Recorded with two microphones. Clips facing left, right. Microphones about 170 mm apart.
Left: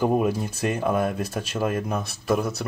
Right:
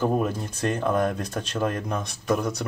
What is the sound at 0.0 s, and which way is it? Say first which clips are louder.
Speech: left 2 dB; 10° left (ahead or behind).